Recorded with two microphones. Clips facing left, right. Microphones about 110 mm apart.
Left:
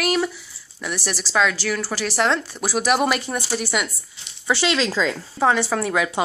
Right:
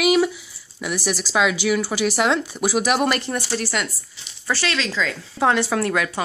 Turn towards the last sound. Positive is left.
turn(degrees=5)  # may be behind; listen again after turning